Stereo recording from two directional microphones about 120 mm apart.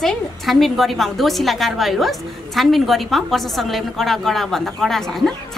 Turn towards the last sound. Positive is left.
turn(degrees=0)  # may be behind; listen again after turning